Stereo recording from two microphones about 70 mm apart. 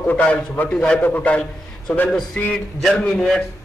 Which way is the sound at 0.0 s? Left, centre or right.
Left.